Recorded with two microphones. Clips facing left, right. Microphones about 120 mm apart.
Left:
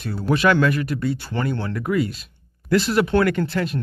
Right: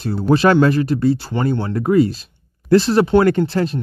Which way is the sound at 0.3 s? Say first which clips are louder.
Right 5 dB; 30° right (ahead or behind).